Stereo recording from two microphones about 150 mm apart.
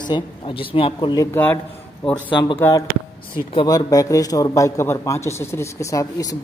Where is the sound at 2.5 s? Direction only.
15° left (ahead or behind).